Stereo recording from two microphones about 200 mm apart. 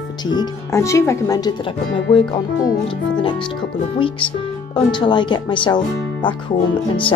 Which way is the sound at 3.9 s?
25° left (ahead or behind).